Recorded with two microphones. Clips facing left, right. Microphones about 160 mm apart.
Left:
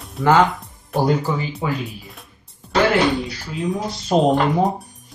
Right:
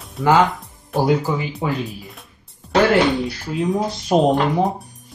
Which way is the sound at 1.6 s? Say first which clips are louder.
Right 1 dB; 20° right (ahead or behind).